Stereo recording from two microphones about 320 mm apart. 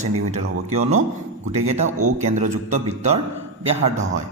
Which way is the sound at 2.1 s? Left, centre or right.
Right.